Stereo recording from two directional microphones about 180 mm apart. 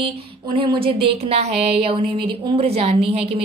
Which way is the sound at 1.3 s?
35° right (ahead or behind).